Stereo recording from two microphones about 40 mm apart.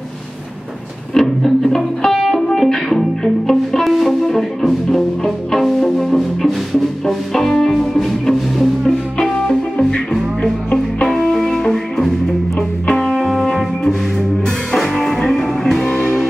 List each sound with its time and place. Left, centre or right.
1.1 s music: centre
11.1 s music: centre